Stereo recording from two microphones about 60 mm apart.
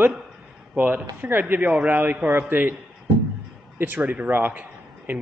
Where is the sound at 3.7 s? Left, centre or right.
Right.